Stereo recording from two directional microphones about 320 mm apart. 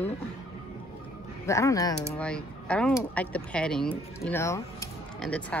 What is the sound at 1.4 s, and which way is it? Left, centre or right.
Speech, centre.